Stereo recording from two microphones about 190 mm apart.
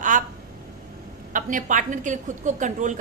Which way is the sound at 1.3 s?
45° right (ahead or behind).